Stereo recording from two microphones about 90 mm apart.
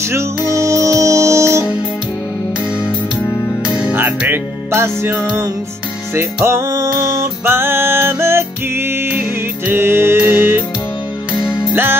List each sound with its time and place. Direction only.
0.6 s music: 35° right (ahead or behind)
4.3 s music: 25° right (ahead or behind)
6.1 s music: 30° right (ahead or behind)
9.7 s music: 25° right (ahead or behind)
11.7 s music: 25° right (ahead or behind)